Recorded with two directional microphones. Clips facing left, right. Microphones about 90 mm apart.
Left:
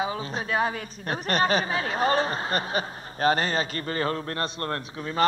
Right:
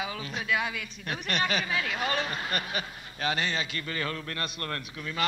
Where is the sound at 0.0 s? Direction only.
35° left (ahead or behind).